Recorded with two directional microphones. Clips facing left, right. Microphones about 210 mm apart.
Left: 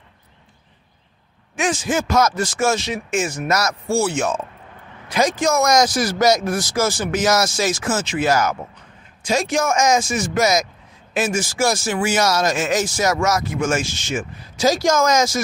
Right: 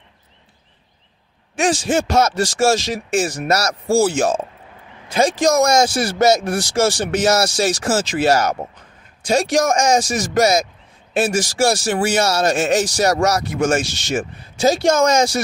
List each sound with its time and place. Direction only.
1.6 s speech: 30° right (ahead or behind)
5.4 s speech: 35° right (ahead or behind)